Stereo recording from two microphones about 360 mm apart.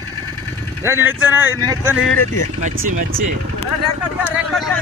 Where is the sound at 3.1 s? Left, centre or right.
Centre.